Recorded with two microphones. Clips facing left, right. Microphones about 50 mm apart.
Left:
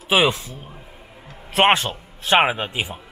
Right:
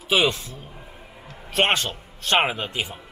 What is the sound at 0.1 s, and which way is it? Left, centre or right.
A man's voice, centre.